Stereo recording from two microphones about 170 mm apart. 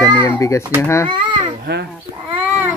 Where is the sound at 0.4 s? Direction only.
20° left (ahead or behind).